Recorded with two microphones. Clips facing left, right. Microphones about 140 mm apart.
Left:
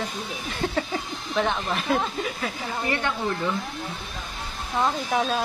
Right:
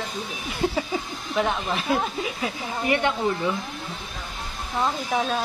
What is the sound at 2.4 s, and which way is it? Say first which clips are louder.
Speech: right 2 dB; 15° right (ahead or behind).